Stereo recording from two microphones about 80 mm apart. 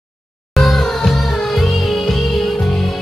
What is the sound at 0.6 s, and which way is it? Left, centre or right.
Music, centre.